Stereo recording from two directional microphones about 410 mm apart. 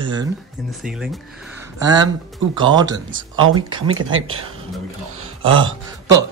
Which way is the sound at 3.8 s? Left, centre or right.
Right.